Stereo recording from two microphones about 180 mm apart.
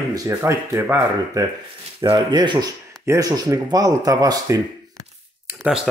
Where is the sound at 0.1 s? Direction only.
15° right (ahead or behind).